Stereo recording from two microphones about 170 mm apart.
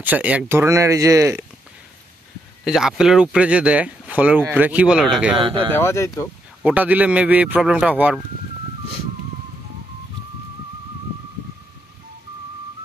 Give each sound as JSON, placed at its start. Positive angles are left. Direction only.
{"t": 0.0, "sound": "speech", "side_deg": -10}
{"t": 2.6, "sound": "speech", "side_deg": 0}
{"t": 5.4, "sound": "speech", "side_deg": -30}
{"t": 5.8, "sound": "speech", "side_deg": 15}
{"t": 6.6, "sound": "speech", "side_deg": -10}